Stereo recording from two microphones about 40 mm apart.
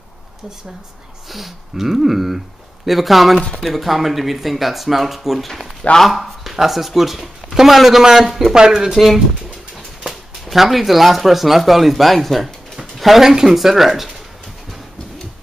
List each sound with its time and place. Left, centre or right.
1.3 s speech: centre
8.9 s speech: centre